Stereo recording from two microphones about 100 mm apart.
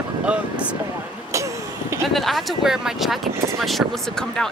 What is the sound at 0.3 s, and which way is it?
Speech, 15° right (ahead or behind).